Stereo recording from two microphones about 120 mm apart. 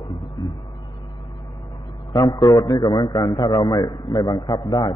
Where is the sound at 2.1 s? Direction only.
30° left (ahead or behind).